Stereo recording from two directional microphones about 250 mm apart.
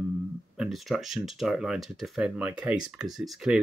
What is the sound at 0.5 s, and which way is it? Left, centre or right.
Speech, centre.